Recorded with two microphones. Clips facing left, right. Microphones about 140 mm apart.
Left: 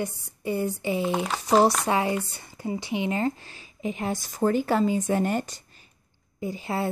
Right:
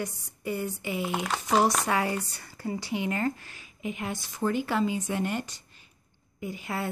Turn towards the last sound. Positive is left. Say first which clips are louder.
# left 5 dB
turn(degrees=30)  # may be behind; listen again after turning